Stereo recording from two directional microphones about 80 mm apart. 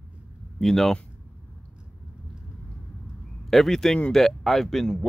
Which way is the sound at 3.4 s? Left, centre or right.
Centre.